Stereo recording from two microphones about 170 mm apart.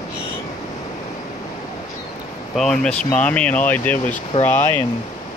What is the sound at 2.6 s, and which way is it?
Speech, 5° left (ahead or behind).